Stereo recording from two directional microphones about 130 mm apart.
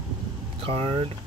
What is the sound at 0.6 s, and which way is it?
Speech, 45° right (ahead or behind).